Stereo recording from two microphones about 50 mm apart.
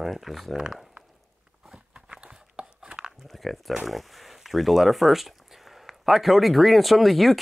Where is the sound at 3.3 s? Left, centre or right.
Centre.